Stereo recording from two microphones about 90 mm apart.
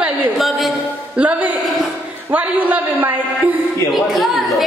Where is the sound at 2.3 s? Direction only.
20° right (ahead or behind).